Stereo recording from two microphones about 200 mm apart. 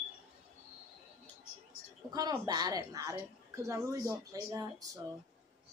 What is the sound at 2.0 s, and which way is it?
A woman's voice, 20° right (ahead or behind).